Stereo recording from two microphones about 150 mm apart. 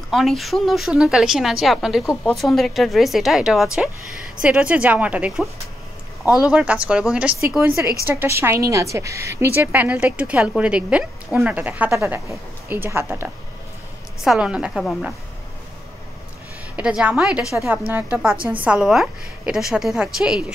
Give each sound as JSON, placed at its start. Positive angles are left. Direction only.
{"t": 0.1, "sound": "a woman's voice", "side_deg": 0}
{"t": 14.2, "sound": "speech", "side_deg": -5}
{"t": 16.7, "sound": "a woman's voice", "side_deg": -5}